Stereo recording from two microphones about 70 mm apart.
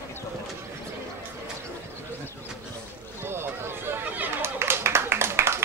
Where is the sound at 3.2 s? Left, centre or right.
Right.